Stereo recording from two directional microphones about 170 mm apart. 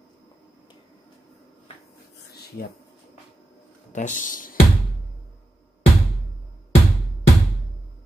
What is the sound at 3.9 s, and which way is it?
Speech, 50° left (ahead or behind).